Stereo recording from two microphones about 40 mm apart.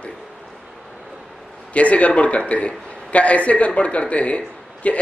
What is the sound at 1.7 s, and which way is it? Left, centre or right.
A woman's voice, left.